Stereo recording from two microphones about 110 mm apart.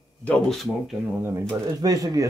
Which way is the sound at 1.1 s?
20° right (ahead or behind).